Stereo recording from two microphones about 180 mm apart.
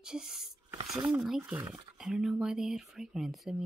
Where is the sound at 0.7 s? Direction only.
15° right (ahead or behind).